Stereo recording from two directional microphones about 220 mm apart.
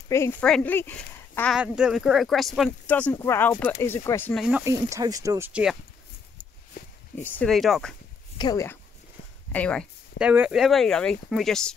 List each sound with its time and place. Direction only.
0.1 s speech: 10° left (ahead or behind); by 5.8 s 5° right (ahead or behind)
7.2 s speech: 10° left (ahead or behind)
8.4 s speech: 15° left (ahead or behind)
9.5 s speech: 5° left (ahead or behind)